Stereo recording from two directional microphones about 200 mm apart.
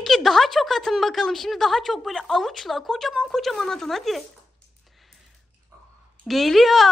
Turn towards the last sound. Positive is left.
turn(degrees=0)  # may be behind; listen again after turning